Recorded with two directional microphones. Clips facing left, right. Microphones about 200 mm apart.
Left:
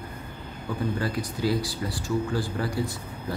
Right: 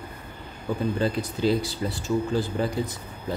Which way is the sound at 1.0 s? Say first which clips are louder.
Right 3 dB; 25° right (ahead or behind).